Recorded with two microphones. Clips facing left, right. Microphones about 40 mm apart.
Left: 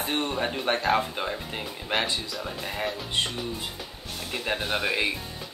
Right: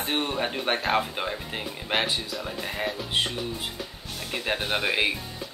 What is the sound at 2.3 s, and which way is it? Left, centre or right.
Speech, centre.